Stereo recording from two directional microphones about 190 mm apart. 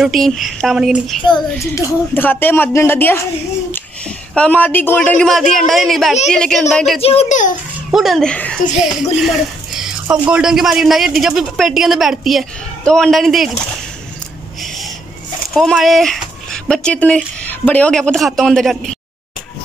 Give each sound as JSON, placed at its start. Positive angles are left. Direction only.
{"t": 0.0, "sound": "a man's voice", "side_deg": 0}
{"t": 1.2, "sound": "speech", "side_deg": 20}
{"t": 4.3, "sound": "a man's voice", "side_deg": 5}
{"t": 7.0, "sound": "a child's voice", "side_deg": 30}
{"t": 7.9, "sound": "a man's voice", "side_deg": 0}
{"t": 9.1, "sound": "a sound", "side_deg": 0}
{"t": 10.3, "sound": "a man's voice", "side_deg": -5}
{"t": 15.5, "sound": "a man's voice", "side_deg": 0}